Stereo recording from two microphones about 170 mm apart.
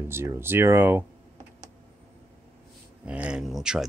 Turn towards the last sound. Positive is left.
turn(degrees=-5)  # may be behind; listen again after turning